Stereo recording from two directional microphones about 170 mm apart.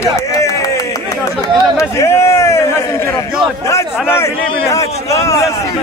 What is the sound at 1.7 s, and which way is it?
Speech, 15° left (ahead or behind).